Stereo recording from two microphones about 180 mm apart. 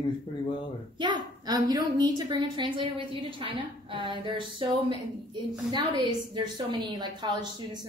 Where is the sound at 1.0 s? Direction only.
25° right (ahead or behind).